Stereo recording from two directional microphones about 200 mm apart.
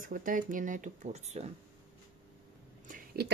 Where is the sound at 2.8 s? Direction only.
45° right (ahead or behind).